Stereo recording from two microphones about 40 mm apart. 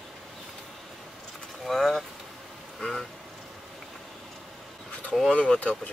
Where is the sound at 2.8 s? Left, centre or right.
Centre.